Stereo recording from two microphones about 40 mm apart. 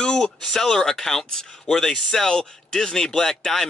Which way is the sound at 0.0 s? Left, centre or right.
Left.